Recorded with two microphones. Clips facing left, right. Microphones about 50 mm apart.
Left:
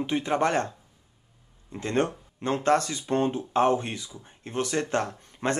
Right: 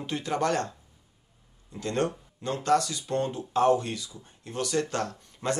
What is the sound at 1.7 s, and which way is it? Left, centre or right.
Speech, left.